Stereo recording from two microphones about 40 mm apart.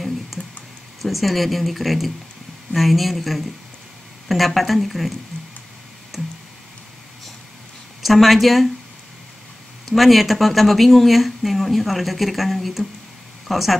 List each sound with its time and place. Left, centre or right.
1.0 s speech: centre
8.0 s speech: centre
9.8 s speech: centre